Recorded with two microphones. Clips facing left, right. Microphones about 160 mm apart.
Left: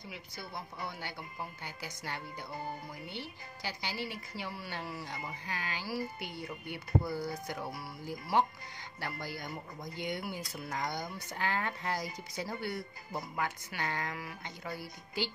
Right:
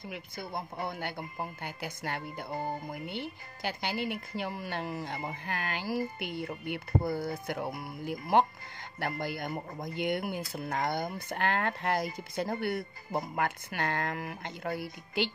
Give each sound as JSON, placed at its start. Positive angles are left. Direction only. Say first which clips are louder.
{"t": 0.1, "sound": "speech", "louder": "right 6 dB", "side_deg": -50}